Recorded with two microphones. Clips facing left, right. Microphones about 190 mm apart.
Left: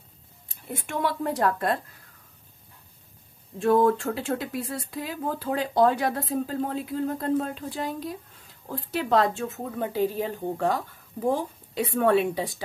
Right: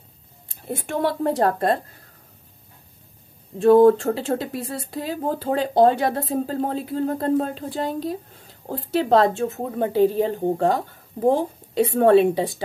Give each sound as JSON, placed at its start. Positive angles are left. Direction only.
{"t": 0.5, "sound": "speech", "side_deg": -35}
{"t": 3.5, "sound": "speech", "side_deg": -30}
{"t": 10.4, "sound": "speech", "side_deg": -40}
{"t": 10.7, "sound": "speech", "side_deg": -30}